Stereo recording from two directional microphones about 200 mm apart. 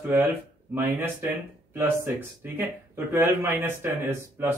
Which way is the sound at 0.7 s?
10° right (ahead or behind).